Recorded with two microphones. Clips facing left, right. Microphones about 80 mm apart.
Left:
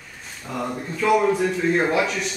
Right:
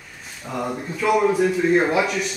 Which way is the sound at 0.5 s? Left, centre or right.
Centre.